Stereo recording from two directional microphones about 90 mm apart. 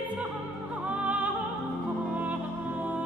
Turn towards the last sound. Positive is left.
turn(degrees=-20)  # may be behind; listen again after turning